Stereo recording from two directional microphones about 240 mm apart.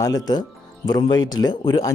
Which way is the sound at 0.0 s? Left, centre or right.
Centre.